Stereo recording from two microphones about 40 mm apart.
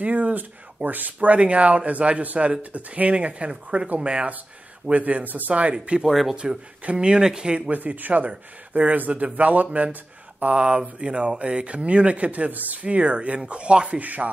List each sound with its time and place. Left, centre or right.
0.0 s speech: right
4.9 s speech: right
5.5 s speech: right
6.0 s speech: centre
6.3 s speech: right
7.7 s speech: right
8.3 s speech: right
9.7 s speech: right
12.8 s speech: right